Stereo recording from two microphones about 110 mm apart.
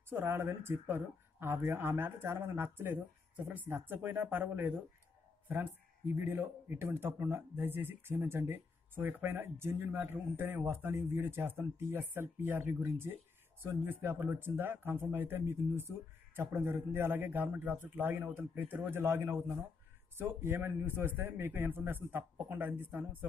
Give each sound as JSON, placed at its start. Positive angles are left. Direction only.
{"t": 0.1, "sound": "speech", "side_deg": -20}